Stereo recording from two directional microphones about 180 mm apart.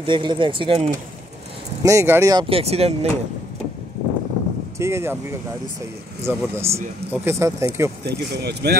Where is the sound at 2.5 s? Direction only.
35° right (ahead or behind).